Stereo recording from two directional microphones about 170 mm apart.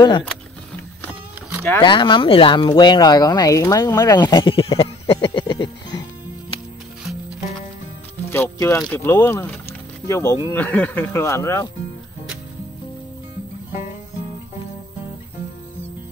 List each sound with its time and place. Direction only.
1.8 s speech: 30° left (ahead or behind)
8.3 s speech: 15° left (ahead or behind)